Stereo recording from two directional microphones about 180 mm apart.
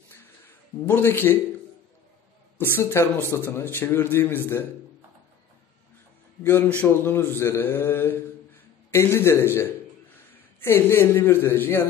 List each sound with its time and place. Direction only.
0.8 s a man's voice: 10° left (ahead or behind)
2.5 s a man's voice: 10° left (ahead or behind)
6.4 s a man's voice: 10° left (ahead or behind)